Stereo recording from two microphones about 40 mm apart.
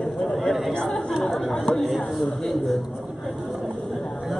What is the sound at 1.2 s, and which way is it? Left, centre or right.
A man's voice, centre.